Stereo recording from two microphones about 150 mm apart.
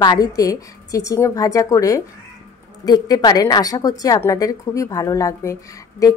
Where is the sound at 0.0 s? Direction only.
25° left (ahead or behind).